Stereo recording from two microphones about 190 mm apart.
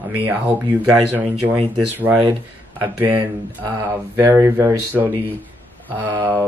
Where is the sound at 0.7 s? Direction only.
15° right (ahead or behind).